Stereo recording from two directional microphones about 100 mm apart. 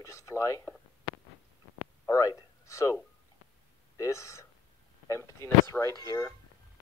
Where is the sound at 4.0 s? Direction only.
30° left (ahead or behind).